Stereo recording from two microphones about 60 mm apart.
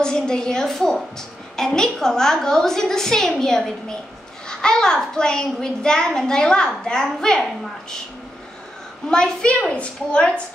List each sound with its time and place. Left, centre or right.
0.0 s a woman's voice: centre
9.1 s a child's voice: centre